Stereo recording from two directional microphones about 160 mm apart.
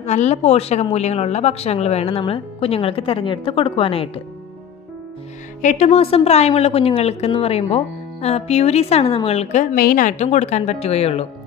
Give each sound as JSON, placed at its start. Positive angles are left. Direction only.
{"t": 0.0, "sound": "a woman's voice", "side_deg": 45}
{"t": 5.6, "sound": "a woman's voice", "side_deg": 50}